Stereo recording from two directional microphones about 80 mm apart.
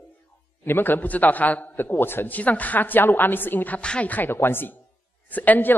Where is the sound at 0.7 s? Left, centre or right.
Left.